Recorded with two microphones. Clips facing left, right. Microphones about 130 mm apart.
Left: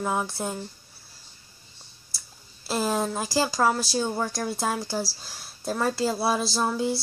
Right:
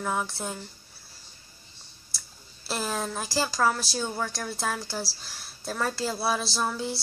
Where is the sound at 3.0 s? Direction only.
10° left (ahead or behind).